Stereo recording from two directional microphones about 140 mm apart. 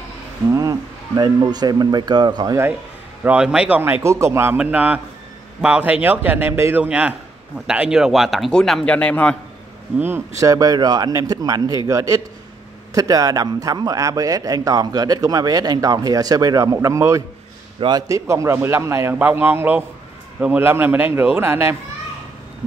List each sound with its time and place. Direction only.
0.5 s a man's voice: 25° right (ahead or behind)
3.3 s a man's voice: 5° right (ahead or behind)
9.9 s a man's voice: 15° right (ahead or behind)